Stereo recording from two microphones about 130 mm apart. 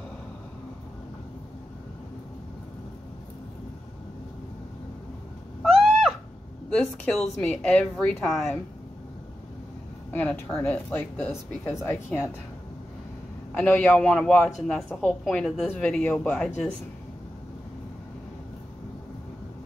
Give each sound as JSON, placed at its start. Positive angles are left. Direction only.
{"t": 5.6, "sound": "owl", "side_deg": 0}
{"t": 7.3, "sound": "a woman's voice", "side_deg": 5}
{"t": 10.1, "sound": "speech", "side_deg": 15}
{"t": 13.6, "sound": "speech", "side_deg": 10}